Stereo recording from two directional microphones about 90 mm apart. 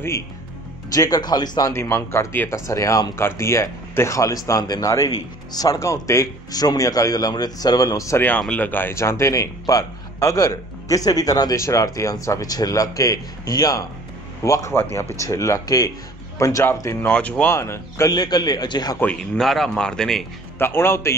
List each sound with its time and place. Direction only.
0.9 s speech: 40° left (ahead or behind)
1.7 s speech: 30° left (ahead or behind)
2.6 s speech: 35° left (ahead or behind)
6.5 s speech: 45° left (ahead or behind)
8.4 s speech: 15° left (ahead or behind)
17.5 s speech: 30° left (ahead or behind)
18.1 s speech: 50° left (ahead or behind)
19.3 s speech: 5° left (ahead or behind)
20.5 s speech: 25° left (ahead or behind)